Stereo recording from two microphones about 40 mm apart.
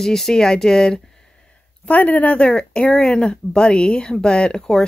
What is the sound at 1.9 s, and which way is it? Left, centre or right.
Speech, left.